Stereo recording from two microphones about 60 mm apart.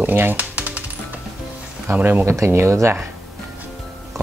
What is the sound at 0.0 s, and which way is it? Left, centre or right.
Music, right.